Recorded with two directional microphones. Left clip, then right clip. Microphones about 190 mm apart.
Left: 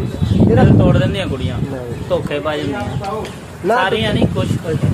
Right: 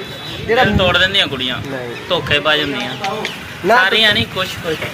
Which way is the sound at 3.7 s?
10° left (ahead or behind).